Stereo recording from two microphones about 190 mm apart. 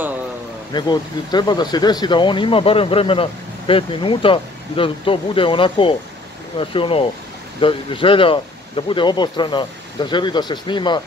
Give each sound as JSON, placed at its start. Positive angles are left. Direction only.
{"t": 0.7, "sound": "speech", "side_deg": 20}